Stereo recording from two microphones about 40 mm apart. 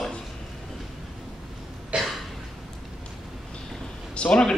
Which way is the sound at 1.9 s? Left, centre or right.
Right.